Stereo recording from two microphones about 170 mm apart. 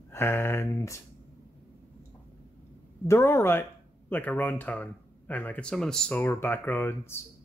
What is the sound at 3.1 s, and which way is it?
Speech, 15° left (ahead or behind).